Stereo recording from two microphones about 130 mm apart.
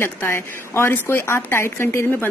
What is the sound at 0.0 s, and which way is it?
Speech, 20° left (ahead or behind).